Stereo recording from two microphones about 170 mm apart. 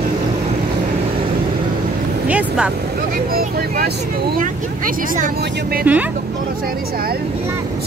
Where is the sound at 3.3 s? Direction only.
65° right (ahead or behind).